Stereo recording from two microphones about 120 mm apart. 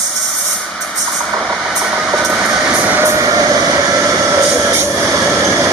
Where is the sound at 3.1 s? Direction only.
30° right (ahead or behind).